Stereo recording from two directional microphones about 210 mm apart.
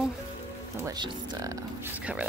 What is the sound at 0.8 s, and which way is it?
Speech, 20° right (ahead or behind).